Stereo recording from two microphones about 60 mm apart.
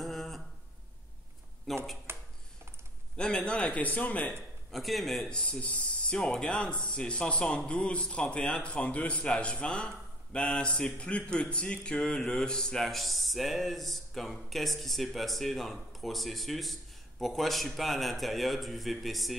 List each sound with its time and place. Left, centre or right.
0.0 s a sound: centre
1.7 s speech: centre
2.1 s a sound: right
3.2 s a man's voice: centre
4.6 s speech: centre
5.3 s speech: left
6.1 s speech: centre